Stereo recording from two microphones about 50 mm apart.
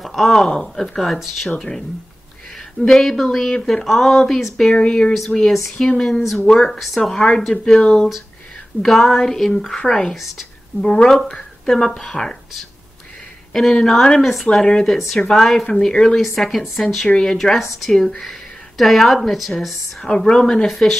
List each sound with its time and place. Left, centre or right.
0.0 s a woman's voice: centre
2.8 s a woman's voice: centre
4.6 s speech: centre
10.1 s a woman's voice: centre
10.8 s speech: centre
16.3 s a woman's voice: centre